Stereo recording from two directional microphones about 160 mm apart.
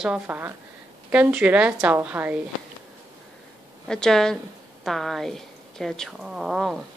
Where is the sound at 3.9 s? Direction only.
5° left (ahead or behind).